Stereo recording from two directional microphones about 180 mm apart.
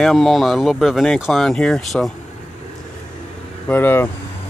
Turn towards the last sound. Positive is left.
turn(degrees=10)  # may be behind; listen again after turning